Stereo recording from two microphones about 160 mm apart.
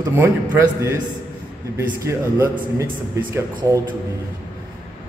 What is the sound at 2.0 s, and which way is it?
A man's voice, 20° right (ahead or behind).